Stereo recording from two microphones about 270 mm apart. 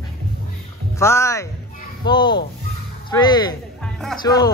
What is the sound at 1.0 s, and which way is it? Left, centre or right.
A man's voice, centre.